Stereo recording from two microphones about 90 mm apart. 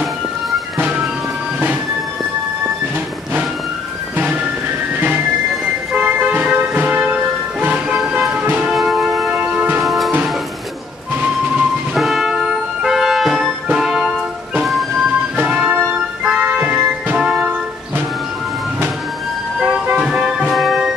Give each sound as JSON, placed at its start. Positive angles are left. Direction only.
{"t": 6.0, "sound": "music", "side_deg": -20}
{"t": 7.6, "sound": "vehicle", "side_deg": -20}
{"t": 8.6, "sound": "music", "side_deg": -5}
{"t": 9.3, "sound": "music", "side_deg": -20}
{"t": 9.8, "sound": "music", "side_deg": 0}
{"t": 11.9, "sound": "music", "side_deg": 0}
{"t": 15.4, "sound": "music", "side_deg": -10}
{"t": 19.6, "sound": "music", "side_deg": -10}